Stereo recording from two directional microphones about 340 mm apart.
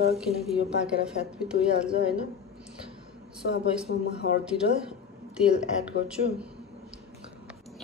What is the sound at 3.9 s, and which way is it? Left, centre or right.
Speech, left.